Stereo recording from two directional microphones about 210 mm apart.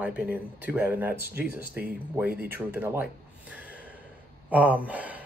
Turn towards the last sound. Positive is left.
turn(degrees=-5)  # may be behind; listen again after turning